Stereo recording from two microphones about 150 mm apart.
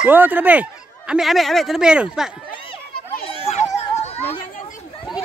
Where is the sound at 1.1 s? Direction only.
Centre (ahead or behind).